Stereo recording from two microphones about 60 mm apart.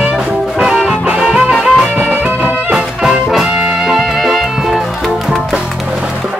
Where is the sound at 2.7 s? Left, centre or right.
Centre.